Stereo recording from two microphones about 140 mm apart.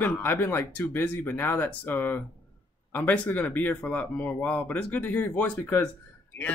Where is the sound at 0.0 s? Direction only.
15° left (ahead or behind).